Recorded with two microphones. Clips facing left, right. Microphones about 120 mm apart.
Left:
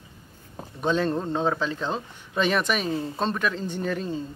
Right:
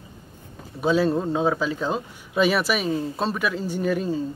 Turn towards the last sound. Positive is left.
turn(degrees=-10)  # may be behind; listen again after turning